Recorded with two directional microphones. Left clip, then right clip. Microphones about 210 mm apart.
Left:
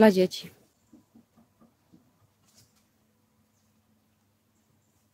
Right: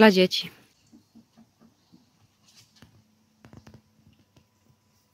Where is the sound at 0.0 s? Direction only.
5° left (ahead or behind).